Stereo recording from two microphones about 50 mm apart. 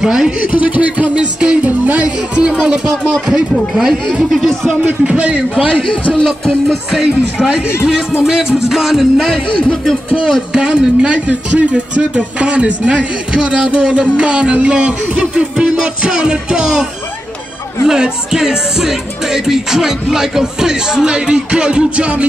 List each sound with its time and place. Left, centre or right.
0.0 s music: centre
0.5 s speech: right
3.7 s music: centre
4.8 s speech: right
6.2 s music: centre
10.2 s speech: centre
17.8 s music: centre